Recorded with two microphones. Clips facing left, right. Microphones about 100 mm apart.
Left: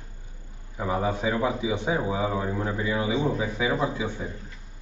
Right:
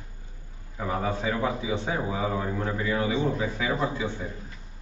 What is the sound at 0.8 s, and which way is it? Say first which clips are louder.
A man's voice: left 2 dB; 15° left (ahead or behind).